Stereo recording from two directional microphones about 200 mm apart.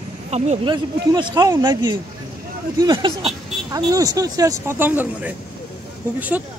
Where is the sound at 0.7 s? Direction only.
20° right (ahead or behind).